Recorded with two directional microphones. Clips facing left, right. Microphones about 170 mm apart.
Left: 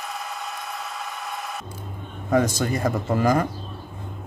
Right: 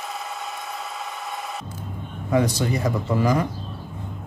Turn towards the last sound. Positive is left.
turn(degrees=50)  # may be behind; listen again after turning